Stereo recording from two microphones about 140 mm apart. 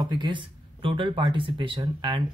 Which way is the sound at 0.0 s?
35° right (ahead or behind).